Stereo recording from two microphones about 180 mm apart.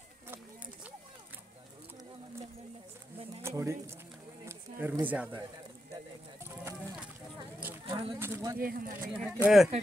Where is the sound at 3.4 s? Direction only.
15° right (ahead or behind).